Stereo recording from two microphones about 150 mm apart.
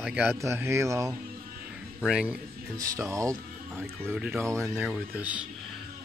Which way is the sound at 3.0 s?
20° right (ahead or behind).